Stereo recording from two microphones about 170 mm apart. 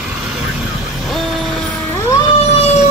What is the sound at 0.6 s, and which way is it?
Vehicle, centre (ahead or behind).